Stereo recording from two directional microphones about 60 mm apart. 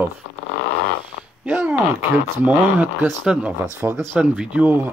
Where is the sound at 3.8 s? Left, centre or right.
Right.